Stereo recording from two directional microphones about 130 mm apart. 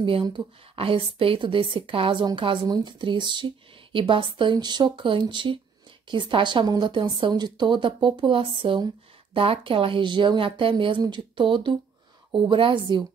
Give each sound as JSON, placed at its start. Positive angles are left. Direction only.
{"t": 0.0, "sound": "a woman's voice", "side_deg": -40}